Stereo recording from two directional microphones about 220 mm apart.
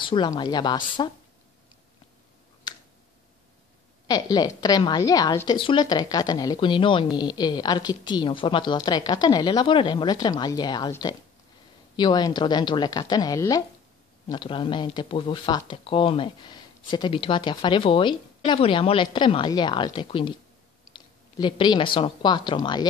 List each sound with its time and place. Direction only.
0.0 s speech: 20° left (ahead or behind)
2.7 s finger snapping: 20° left (ahead or behind)
4.1 s speech: 15° left (ahead or behind)